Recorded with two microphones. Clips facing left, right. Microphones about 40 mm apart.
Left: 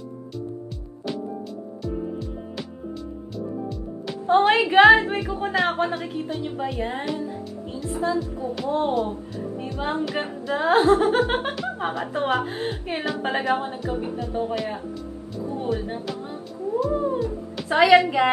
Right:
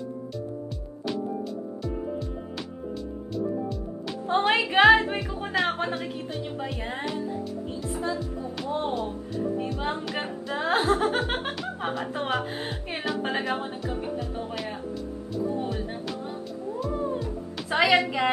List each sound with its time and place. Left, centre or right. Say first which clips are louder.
4.3 s a woman's voice: left 6 dB; centre
16.9 s music: left 5 dB; centre